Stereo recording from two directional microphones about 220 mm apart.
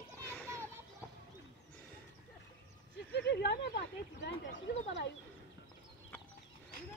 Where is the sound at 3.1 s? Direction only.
50° left (ahead or behind).